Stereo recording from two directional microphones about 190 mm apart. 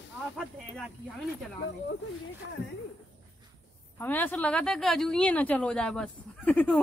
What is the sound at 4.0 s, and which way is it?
A woman's voice, 10° left (ahead or behind).